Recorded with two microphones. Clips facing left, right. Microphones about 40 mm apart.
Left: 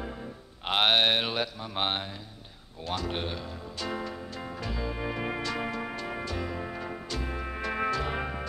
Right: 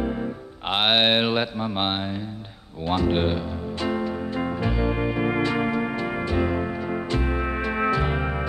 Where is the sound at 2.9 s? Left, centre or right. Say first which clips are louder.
Right 10 dB; right.